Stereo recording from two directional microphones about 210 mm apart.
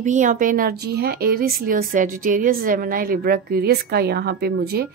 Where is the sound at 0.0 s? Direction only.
35° right (ahead or behind).